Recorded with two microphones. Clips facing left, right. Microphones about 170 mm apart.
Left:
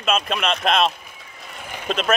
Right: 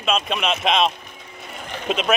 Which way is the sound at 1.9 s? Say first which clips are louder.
Even; centre (ahead or behind).